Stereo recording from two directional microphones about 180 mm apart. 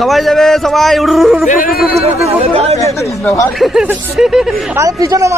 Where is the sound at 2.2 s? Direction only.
35° right (ahead or behind).